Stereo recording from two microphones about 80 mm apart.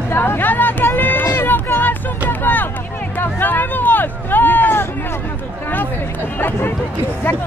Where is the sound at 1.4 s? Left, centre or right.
Left.